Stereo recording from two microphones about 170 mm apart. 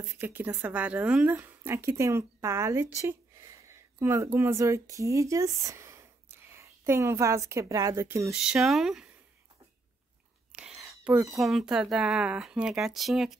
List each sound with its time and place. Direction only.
0.1 s speech: 10° right (ahead or behind)
8.3 s speech: 5° right (ahead or behind)
10.5 s whispering: 5° right (ahead or behind)
11.3 s speech: centre (ahead or behind)